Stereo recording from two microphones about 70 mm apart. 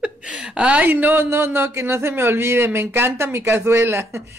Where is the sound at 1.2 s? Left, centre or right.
Right.